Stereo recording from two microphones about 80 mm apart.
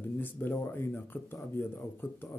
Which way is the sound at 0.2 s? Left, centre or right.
Left.